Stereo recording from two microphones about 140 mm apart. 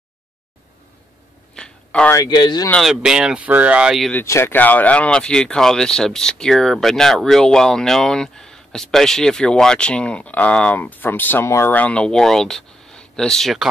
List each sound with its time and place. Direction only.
1.5 s a sound: 5° left (ahead or behind)
2.1 s speech: 30° left (ahead or behind)
2.7 s speech: centre (ahead or behind)
4.1 s speech: 15° left (ahead or behind)